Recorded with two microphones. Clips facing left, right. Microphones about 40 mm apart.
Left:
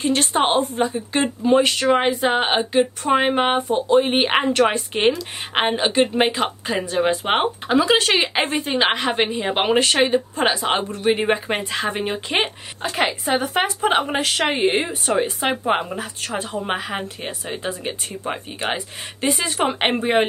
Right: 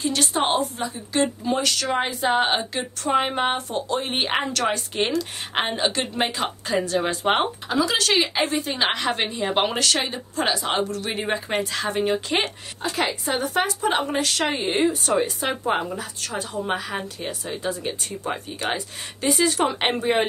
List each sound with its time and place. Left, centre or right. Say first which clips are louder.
0.0 s a woman's voice: left 4 dB; left
5.1 s a woman's voice: left 1 dB; centre
7.6 s a woman's voice: left 5 dB; left
8.7 s a woman's voice: left 7 dB; left
14.5 s speech: left 3 dB; left
14.9 s a woman's voice: left 1 dB; left